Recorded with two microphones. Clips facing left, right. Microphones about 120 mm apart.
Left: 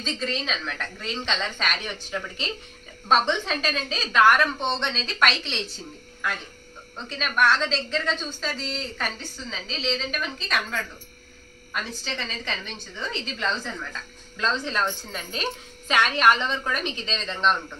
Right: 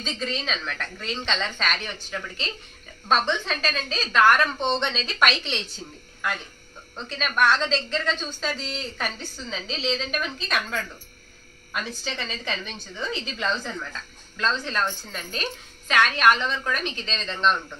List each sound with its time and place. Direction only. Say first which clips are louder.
0.0 s a woman's voice: left 1 dB; centre (ahead or behind)
4.7 s speech: right 2 dB; 5° right (ahead or behind)
7.0 s a woman's voice: even; 5° left (ahead or behind)
14.3 s a woman's voice: even; 15° left (ahead or behind)
15.9 s a woman's voice: even; 20° left (ahead or behind)
16.6 s a woman's voice: even; 15° left (ahead or behind)